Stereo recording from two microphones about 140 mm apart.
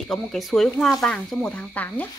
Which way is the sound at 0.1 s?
Centre (ahead or behind).